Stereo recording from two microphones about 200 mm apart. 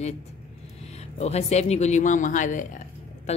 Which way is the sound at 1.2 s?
35° left (ahead or behind).